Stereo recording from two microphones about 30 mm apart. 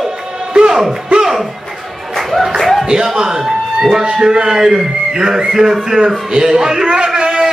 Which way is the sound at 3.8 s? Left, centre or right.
Right.